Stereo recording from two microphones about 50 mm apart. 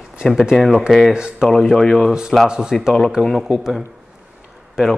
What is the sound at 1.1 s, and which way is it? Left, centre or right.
Speech, centre.